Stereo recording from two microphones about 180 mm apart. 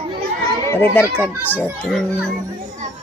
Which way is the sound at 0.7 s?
10° left (ahead or behind).